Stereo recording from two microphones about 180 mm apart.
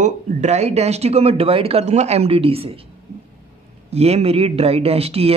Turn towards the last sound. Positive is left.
turn(degrees=-35)  # may be behind; listen again after turning